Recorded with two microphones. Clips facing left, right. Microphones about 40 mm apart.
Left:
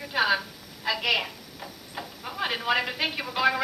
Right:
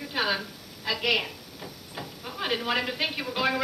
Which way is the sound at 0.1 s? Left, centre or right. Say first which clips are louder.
Left 4 dB; centre.